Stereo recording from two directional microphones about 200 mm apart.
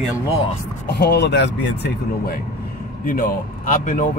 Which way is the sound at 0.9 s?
55° left (ahead or behind).